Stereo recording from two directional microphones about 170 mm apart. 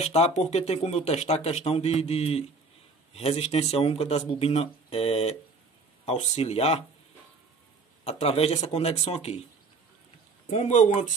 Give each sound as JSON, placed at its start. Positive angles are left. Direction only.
{"t": 0.0, "sound": "speech", "side_deg": 40}
{"t": 8.0, "sound": "speech", "side_deg": 35}
{"t": 10.5, "sound": "speech", "side_deg": 45}